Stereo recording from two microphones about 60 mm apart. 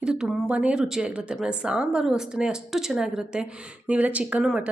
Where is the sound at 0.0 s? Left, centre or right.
Centre.